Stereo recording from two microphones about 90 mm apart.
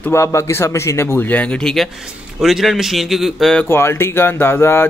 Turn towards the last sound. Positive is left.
turn(degrees=25)  # may be behind; listen again after turning